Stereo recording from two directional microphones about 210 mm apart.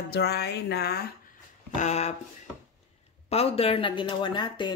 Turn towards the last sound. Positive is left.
turn(degrees=20)  # may be behind; listen again after turning